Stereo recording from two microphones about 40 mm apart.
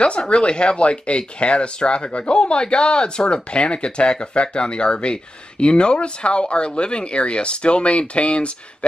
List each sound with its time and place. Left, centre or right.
0.0 s speech: left